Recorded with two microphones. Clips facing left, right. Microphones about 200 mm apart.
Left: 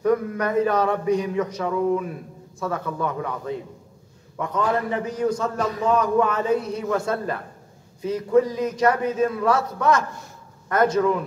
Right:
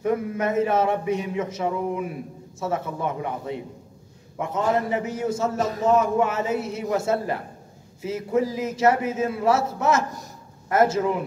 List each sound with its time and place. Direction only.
0.0 s speech: 25° right (ahead or behind)